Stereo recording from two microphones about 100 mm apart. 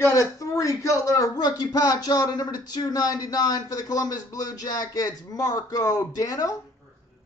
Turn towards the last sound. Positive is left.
turn(degrees=35)  # may be behind; listen again after turning